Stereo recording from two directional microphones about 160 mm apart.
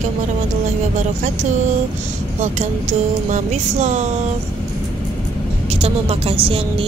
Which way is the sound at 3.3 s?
50° right (ahead or behind).